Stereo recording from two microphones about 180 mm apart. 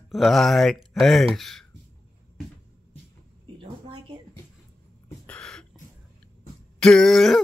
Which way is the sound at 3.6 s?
30° right (ahead or behind).